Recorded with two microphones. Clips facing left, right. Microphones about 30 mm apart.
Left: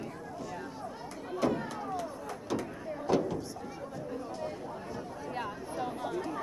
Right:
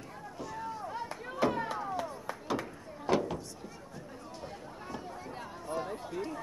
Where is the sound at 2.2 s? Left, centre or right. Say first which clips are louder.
Even; centre.